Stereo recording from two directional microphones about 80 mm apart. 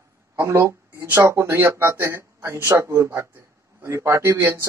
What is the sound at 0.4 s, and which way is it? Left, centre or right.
Speech, right.